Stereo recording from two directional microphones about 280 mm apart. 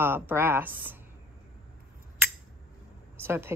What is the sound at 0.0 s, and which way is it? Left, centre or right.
Speech, centre.